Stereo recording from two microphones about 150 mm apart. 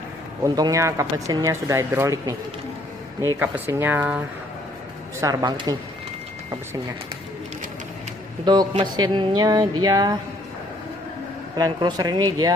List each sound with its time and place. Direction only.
0.4 s speech: 20° right (ahead or behind)
5.2 s speech: 30° right (ahead or behind)
8.5 s speech: 30° right (ahead or behind)
11.5 s speech: 25° right (ahead or behind)